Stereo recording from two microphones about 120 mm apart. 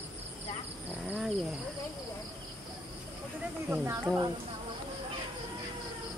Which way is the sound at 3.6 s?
20° right (ahead or behind).